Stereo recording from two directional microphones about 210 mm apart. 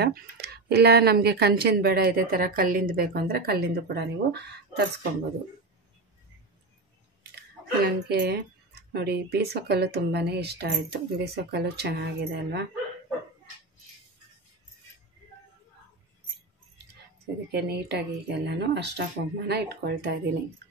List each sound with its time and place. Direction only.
0.0 s speech: 50° right (ahead or behind)
7.8 s speech: 50° right (ahead or behind)
17.5 s speech: 50° right (ahead or behind)